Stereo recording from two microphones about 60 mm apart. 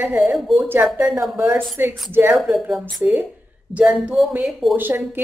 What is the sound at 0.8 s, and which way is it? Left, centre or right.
Speech, right.